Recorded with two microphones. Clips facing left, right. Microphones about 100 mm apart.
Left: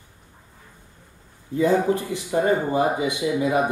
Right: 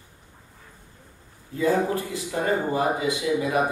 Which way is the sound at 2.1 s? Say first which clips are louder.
Left 4 dB; 25° left (ahead or behind).